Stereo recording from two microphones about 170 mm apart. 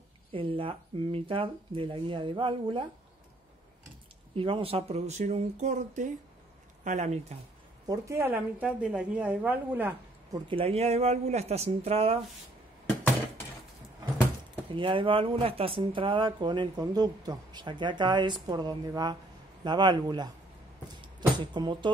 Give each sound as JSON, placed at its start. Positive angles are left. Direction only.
{"t": 0.3, "sound": "speech", "side_deg": -30}
{"t": 4.4, "sound": "speech", "side_deg": -30}
{"t": 7.8, "sound": "a woman's voice", "side_deg": -20}
{"t": 10.5, "sound": "speech", "side_deg": -35}
{"t": 14.8, "sound": "speech", "side_deg": -30}
{"t": 21.5, "sound": "speech", "side_deg": -25}